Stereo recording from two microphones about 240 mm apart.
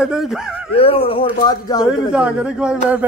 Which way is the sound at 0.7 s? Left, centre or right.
Left.